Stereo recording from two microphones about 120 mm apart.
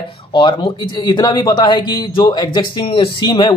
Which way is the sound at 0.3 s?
40° left (ahead or behind).